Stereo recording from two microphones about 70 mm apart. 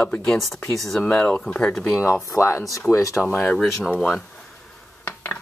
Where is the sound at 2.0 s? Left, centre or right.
Left.